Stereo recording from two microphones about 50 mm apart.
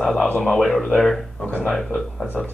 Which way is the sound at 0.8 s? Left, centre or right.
Centre.